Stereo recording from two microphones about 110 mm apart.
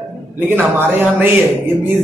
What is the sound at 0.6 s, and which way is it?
Speech, 20° right (ahead or behind).